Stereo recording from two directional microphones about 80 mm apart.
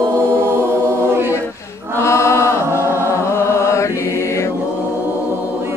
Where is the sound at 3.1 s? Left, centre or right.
Left.